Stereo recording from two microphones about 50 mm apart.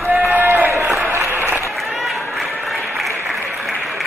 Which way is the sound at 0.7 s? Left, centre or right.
Right.